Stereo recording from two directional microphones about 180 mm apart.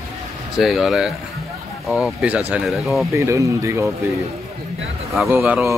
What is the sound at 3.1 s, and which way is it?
Speech, 15° right (ahead or behind).